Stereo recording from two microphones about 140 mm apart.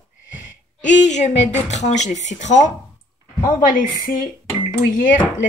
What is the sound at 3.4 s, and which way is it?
Speech, 75° left (ahead or behind).